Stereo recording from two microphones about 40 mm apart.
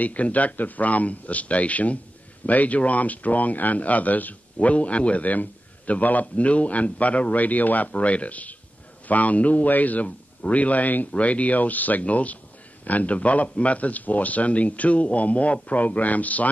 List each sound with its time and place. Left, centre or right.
0.0 s speech: left
11.1 s speech: left